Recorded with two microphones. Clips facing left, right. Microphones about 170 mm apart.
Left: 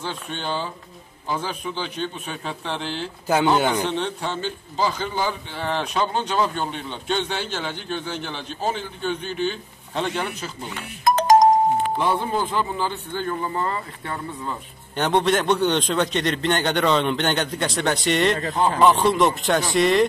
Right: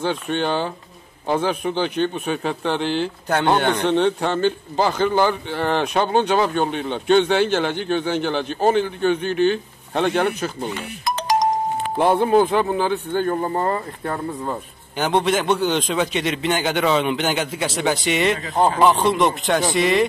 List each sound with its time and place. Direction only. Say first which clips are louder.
0.0 s a man's voice: right 8 dB; 65° right (ahead or behind)
3.5 s a man's voice: right 1 dB; 5° left (ahead or behind)
3.8 s a man's voice: right 7 dB; 60° right (ahead or behind)
11.1 s music: left 5 dB; 45° left (ahead or behind)
12.0 s a man's voice: right 7 dB; 55° right (ahead or behind); by 14.6 s 40° right (ahead or behind)
15.0 s a man's voice: right 1 dB; centre (ahead or behind)